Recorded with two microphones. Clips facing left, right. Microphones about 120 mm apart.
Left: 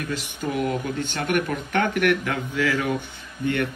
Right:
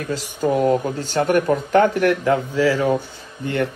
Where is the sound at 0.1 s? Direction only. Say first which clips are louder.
Right 10 dB; 35° right (ahead or behind).